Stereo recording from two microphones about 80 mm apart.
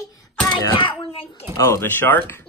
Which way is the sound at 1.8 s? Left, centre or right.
Left.